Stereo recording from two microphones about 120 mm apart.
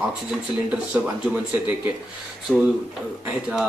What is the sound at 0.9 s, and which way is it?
Speech, 15° right (ahead or behind).